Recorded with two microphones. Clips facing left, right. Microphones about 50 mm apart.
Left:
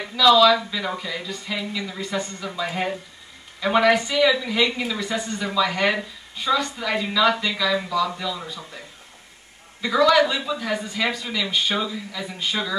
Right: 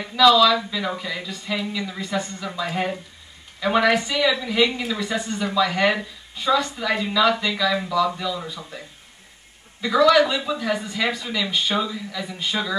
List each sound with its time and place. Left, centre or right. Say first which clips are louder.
0.1 s speech: even; centre
9.8 s speech: right 1 dB; centre